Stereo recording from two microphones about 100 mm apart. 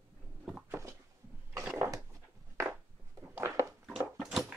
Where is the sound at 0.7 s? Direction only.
25° right (ahead or behind).